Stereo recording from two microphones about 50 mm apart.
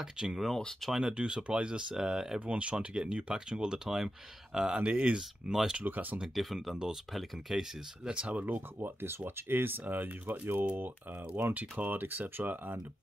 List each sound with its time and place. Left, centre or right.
0.0 s speech: centre
1.1 s speech: centre
2.4 s speech: right
4.6 s speech: right
5.5 s speech: centre
5.9 s speech: right
6.2 s speech: centre
8.1 s speech: right
8.7 s speech: right
11.5 s speech: right